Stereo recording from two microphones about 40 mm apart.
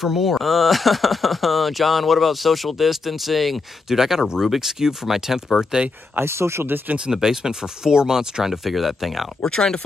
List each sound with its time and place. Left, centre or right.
0.0 s speech: centre
6.1 s speech: right
7.1 s speech: centre
8.6 s speech: centre
9.4 s speech: centre